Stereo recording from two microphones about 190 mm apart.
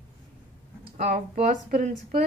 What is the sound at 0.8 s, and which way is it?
Speech, 35° right (ahead or behind).